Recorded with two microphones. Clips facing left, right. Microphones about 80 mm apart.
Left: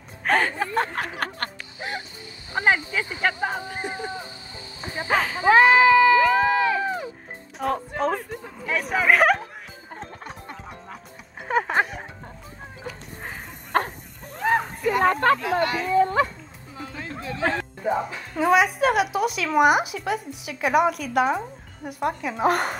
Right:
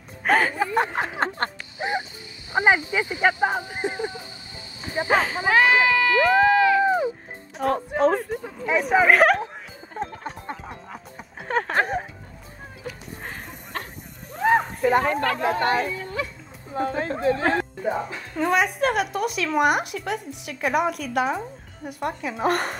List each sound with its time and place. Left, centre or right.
0.2 s speech: centre
5.5 s speech: left
6.4 s crowd: left
6.8 s a sound: centre
7.5 s speech: centre
11.4 s a sound: centre
13.7 s bow-wow: left
14.3 s a sound: centre
14.8 s a sound: right
15.0 s speech: left
15.6 s speech: right
15.9 s speech: left
16.7 s speech: right
17.8 s speech: centre